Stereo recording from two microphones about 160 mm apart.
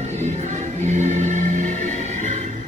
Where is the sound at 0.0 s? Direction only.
45° right (ahead or behind).